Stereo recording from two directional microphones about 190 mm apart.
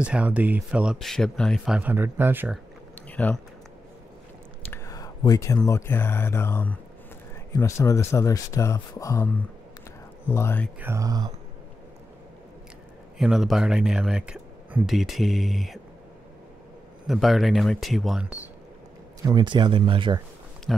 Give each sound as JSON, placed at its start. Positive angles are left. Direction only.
{"t": 0.0, "sound": "speech", "side_deg": -5}
{"t": 3.1, "sound": "a sound", "side_deg": 10}
{"t": 4.6, "sound": "speech", "side_deg": 15}
{"t": 10.8, "sound": "speech", "side_deg": -15}
{"t": 13.2, "sound": "speech", "side_deg": 0}
{"t": 17.0, "sound": "speech", "side_deg": 0}
{"t": 19.2, "sound": "speech", "side_deg": -25}